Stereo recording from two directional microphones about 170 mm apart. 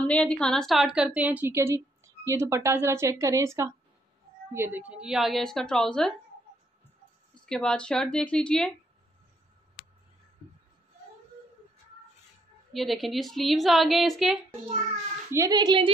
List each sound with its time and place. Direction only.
0.0 s a woman's voice: 5° left (ahead or behind)
7.4 s a woman's voice: 5° left (ahead or behind)
12.7 s a woman's voice: centre (ahead or behind)
15.3 s a child's voice: 20° right (ahead or behind)